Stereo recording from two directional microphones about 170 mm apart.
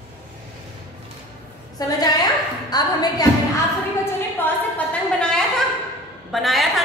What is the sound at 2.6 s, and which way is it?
Speech, 25° left (ahead or behind).